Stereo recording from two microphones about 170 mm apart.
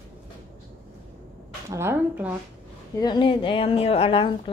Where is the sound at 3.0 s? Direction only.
25° left (ahead or behind).